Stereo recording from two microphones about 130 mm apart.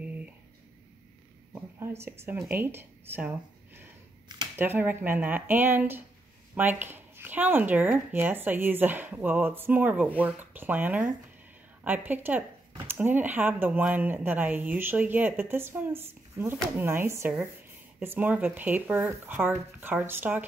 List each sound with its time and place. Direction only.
1.5 s a sound: 20° right (ahead or behind)
2.4 s speech: 15° right (ahead or behind)
4.6 s speech: 15° right (ahead or behind)